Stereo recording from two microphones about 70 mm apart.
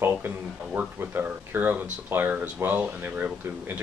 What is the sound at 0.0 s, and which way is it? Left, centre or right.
Speech, right.